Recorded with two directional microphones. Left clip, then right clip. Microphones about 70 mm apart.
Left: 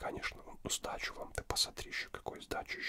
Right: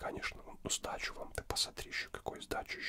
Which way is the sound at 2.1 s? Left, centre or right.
Centre.